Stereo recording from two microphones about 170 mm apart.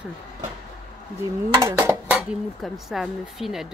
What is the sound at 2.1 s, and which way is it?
Speech, centre (ahead or behind).